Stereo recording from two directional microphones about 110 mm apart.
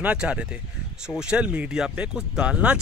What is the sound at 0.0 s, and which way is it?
Speech, 10° right (ahead or behind).